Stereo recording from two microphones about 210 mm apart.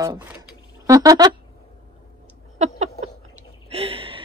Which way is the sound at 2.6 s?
30° right (ahead or behind).